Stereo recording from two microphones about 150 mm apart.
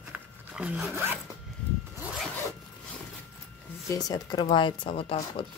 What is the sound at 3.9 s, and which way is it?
Speech, 25° left (ahead or behind).